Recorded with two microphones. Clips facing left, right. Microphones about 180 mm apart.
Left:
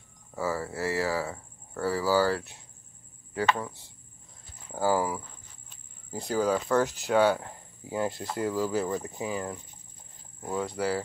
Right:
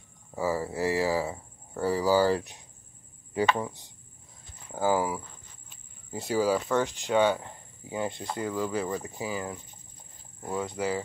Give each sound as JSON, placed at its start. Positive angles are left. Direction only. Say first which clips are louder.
{"t": 0.4, "sound": "speech", "louder": "right 2 dB", "side_deg": -15}
{"t": 4.7, "sound": "speech", "louder": "even", "side_deg": 0}